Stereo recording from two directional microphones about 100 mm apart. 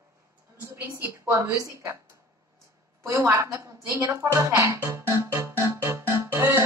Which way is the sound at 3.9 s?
30° right (ahead or behind).